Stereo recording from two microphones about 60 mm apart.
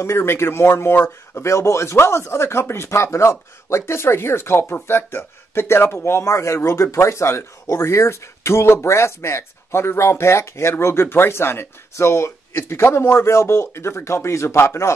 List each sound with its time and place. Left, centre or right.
0.0 s speech: left
1.5 s speech: left